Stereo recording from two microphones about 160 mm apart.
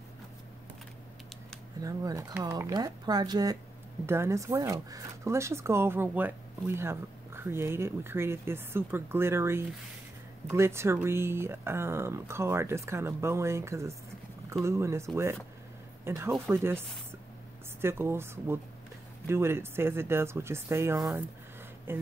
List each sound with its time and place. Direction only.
1.8 s speech: 20° right (ahead or behind)